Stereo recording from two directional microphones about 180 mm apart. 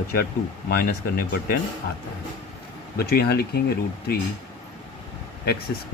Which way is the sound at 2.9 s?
60° left (ahead or behind).